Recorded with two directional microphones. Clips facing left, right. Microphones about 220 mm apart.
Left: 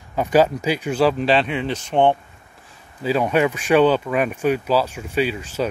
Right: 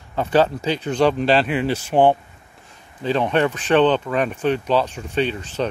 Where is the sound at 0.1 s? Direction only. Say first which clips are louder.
Left 1 dB; 10° left (ahead or behind); by 2.1 s 5° right (ahead or behind).